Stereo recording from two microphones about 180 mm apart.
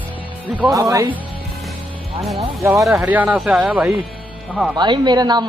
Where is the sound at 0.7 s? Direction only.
20° right (ahead or behind).